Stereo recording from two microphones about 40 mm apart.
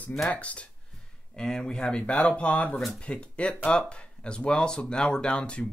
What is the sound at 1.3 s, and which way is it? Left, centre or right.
Speech, centre.